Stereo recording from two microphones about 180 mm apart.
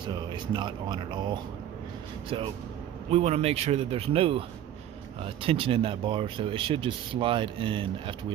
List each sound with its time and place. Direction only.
0.1 s a man's voice: 25° right (ahead or behind)